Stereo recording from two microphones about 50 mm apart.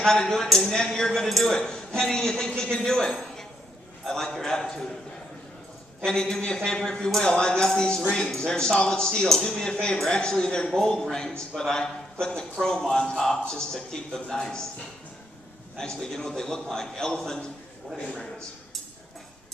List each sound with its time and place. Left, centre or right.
0.0 s speech: centre
6.0 s speech: centre
15.8 s speech: centre